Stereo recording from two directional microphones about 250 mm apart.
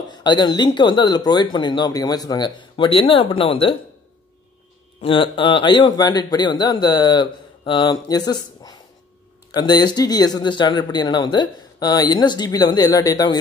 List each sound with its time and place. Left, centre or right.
0.1 s speech: centre
5.0 s speech: left